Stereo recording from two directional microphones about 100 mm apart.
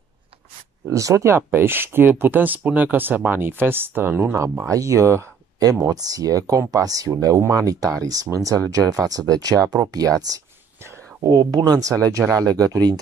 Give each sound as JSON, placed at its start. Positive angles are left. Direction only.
{"t": 0.8, "sound": "speech", "side_deg": -30}